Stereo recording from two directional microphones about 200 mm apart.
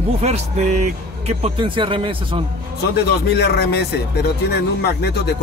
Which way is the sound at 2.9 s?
55° left (ahead or behind).